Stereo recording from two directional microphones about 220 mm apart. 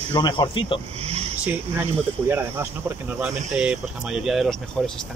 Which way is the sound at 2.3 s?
10° right (ahead or behind).